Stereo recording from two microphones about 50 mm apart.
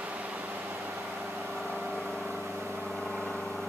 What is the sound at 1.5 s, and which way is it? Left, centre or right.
Vehicle, centre.